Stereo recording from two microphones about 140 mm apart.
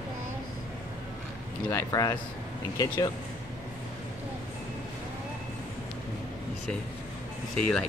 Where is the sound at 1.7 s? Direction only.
25° left (ahead or behind).